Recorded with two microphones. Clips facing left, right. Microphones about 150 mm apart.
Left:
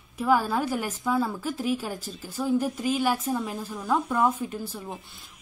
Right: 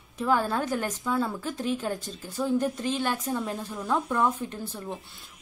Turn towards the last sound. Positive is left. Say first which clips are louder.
# left 1 dB
turn(degrees=5)  # may be behind; listen again after turning